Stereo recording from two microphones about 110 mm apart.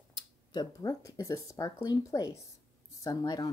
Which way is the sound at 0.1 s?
40° left (ahead or behind).